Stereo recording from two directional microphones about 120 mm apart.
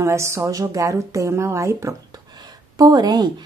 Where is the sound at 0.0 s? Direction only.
25° right (ahead or behind).